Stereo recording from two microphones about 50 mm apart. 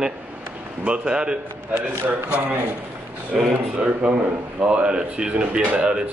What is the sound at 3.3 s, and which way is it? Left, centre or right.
Speech, right.